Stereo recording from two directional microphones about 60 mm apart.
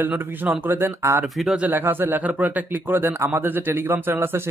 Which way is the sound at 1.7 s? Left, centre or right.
Right.